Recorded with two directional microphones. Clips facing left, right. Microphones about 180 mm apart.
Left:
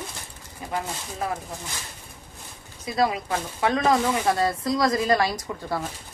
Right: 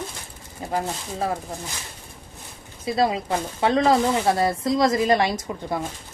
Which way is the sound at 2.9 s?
30° right (ahead or behind).